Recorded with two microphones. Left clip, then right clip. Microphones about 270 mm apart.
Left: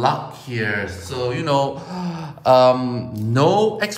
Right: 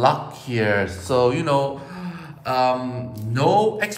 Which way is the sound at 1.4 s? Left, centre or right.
Centre.